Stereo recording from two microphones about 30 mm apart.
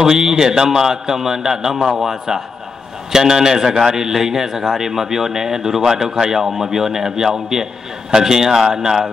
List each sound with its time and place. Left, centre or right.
0.0 s a man's voice: centre